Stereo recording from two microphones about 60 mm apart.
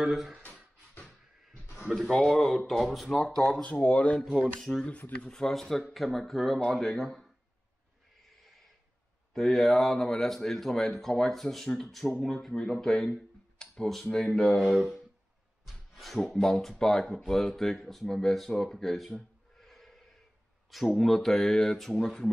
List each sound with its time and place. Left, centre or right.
0.1 s speech: centre
2.0 s speech: centre
3.6 s speech: left
4.2 s speech: centre
4.8 s speech: left
5.3 s speech: centre
9.3 s speech: centre
15.6 s a sound: centre
16.3 s speech: centre
18.6 s a sound: centre
20.7 s speech: centre